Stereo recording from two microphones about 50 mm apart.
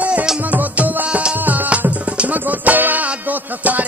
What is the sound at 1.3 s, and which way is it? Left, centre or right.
Music, right.